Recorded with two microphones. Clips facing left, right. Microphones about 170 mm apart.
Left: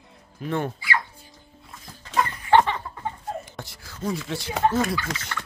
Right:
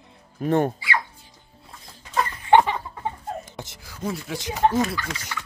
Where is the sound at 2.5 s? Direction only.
15° right (ahead or behind).